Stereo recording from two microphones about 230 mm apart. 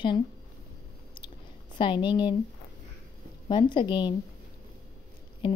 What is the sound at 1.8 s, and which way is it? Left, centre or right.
Speech, left.